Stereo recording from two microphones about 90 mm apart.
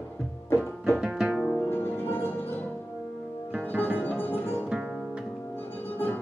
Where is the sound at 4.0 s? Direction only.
20° left (ahead or behind).